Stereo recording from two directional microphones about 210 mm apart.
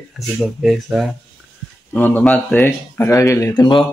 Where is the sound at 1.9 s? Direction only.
10° left (ahead or behind).